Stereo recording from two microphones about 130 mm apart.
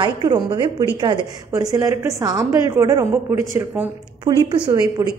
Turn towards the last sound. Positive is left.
turn(degrees=-25)  # may be behind; listen again after turning